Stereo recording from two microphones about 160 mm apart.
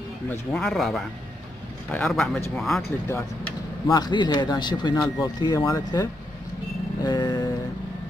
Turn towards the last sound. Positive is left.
turn(degrees=25)  # may be behind; listen again after turning